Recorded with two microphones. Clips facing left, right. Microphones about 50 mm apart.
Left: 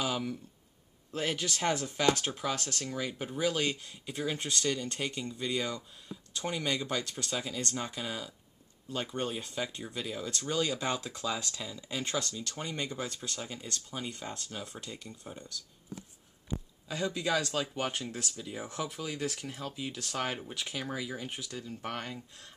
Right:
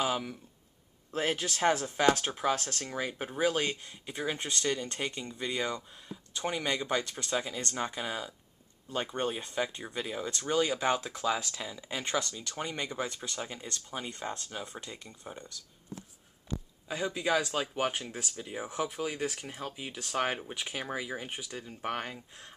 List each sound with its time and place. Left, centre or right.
0.0 s speech: centre
16.8 s speech: centre
18.3 s speech: right
18.6 s speech: centre